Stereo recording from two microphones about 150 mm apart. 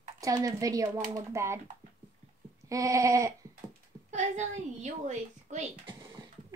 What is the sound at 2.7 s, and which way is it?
Speech, 20° right (ahead or behind).